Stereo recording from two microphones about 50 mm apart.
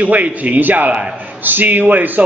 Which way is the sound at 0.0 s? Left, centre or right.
Right.